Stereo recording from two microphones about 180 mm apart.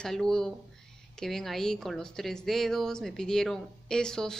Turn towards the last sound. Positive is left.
turn(degrees=5)  # may be behind; listen again after turning